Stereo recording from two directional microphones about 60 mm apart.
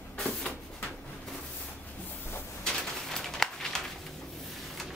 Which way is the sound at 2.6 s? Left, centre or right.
Centre.